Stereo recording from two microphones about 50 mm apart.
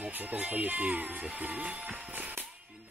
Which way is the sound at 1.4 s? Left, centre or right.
Right.